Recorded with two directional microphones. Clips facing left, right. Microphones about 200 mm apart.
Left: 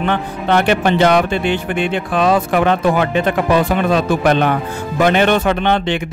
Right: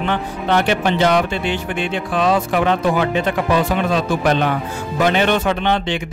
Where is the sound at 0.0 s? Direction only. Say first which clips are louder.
Left 2 dB; 55° left (ahead or behind).